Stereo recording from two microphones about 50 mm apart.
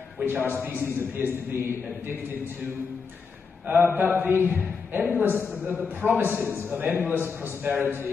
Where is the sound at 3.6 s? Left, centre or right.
Right.